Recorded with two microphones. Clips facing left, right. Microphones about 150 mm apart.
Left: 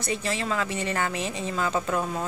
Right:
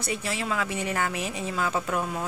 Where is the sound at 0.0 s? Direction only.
10° right (ahead or behind).